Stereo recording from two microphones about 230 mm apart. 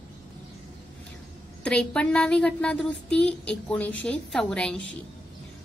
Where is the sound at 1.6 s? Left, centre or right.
Centre.